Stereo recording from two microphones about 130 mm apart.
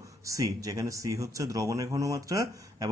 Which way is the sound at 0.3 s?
25° right (ahead or behind).